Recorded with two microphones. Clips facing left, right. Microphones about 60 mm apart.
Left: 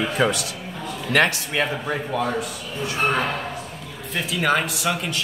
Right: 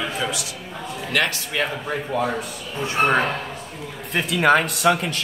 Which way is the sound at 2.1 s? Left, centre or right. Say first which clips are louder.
Right 2 dB; centre.